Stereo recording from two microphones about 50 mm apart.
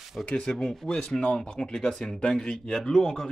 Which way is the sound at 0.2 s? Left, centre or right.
Centre.